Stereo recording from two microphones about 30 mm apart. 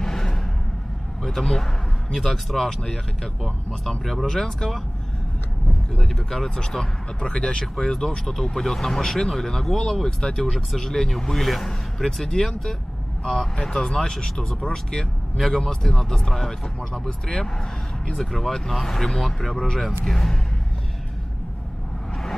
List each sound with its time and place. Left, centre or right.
0.0 s a sound: centre
1.2 s speech: centre
3.9 s speech: centre
6.0 s speech: centre
7.2 s speech: left
7.6 s speech: centre
10.0 s speech: left
13.6 s speech: left
15.3 s speech: centre; by 17.5 s left
18.1 s speech: centre